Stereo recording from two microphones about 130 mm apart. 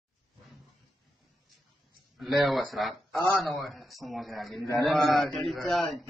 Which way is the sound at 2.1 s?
Centre (ahead or behind).